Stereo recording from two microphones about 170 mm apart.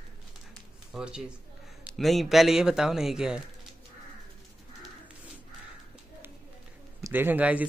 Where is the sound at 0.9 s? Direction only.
5° right (ahead or behind).